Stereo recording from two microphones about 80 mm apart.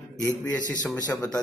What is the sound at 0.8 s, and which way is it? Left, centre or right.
Speech, left.